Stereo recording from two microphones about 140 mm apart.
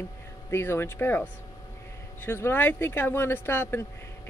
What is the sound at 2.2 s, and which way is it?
Speech, 15° left (ahead or behind).